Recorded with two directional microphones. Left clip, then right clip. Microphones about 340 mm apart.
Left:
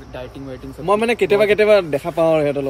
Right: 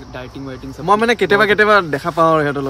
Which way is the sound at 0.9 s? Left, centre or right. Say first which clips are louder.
Right 3 dB; centre.